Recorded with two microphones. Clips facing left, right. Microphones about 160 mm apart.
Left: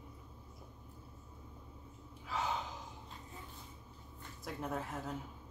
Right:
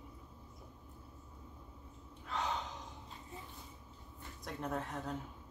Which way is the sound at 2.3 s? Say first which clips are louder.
Even; centre (ahead or behind).